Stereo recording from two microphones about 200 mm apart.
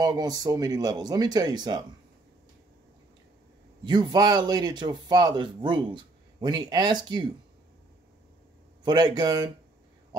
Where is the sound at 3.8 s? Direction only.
20° right (ahead or behind).